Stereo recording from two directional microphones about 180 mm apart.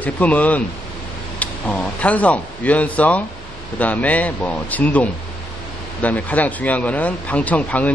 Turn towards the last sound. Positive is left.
turn(degrees=10)  # may be behind; listen again after turning